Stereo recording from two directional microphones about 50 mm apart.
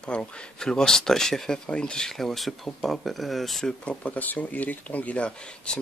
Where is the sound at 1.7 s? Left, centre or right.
Centre.